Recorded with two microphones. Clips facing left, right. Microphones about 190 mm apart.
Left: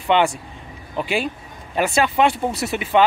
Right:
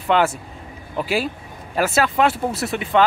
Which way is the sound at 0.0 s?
Centre (ahead or behind).